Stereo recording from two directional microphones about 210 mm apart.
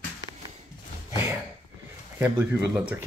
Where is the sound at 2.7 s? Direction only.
10° right (ahead or behind).